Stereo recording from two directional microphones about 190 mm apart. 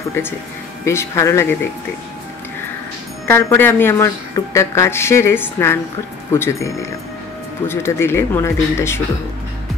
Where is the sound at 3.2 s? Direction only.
10° left (ahead or behind).